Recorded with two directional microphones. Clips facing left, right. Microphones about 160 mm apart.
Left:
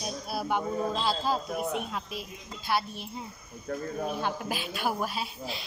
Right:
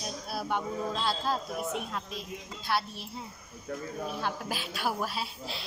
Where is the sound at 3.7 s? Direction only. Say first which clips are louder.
Left 3 dB; 55° left (ahead or behind).